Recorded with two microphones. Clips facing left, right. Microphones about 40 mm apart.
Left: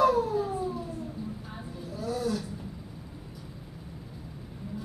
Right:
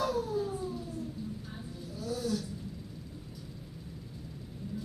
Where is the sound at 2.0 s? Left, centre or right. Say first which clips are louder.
Left 3 dB; centre.